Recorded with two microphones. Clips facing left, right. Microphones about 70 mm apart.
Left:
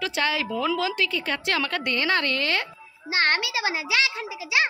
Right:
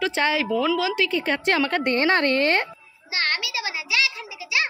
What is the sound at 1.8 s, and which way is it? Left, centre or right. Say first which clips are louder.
Speech: right 4 dB; right.